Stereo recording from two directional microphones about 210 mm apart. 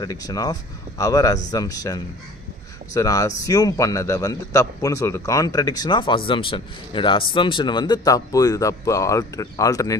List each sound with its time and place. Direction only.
0.0 s a man's voice: 15° left (ahead or behind)